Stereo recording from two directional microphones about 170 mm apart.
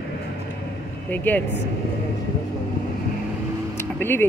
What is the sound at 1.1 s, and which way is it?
Speech, 10° left (ahead or behind).